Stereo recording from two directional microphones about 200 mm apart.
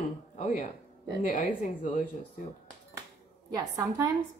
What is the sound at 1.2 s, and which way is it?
Speech, 40° left (ahead or behind).